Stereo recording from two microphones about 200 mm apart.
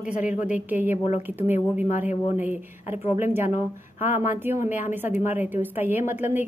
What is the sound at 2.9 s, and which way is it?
Speech, 30° left (ahead or behind).